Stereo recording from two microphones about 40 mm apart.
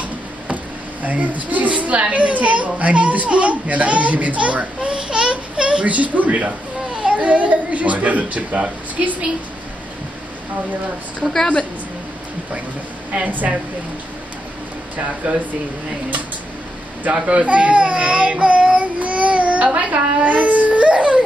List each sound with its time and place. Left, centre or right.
1.0 s a child's voice: right
4.9 s a sound: right
5.9 s a child's voice: right
13.1 s a child's voice: right
15.2 s speech: right
17.0 s speech: right
20.2 s baby cry: right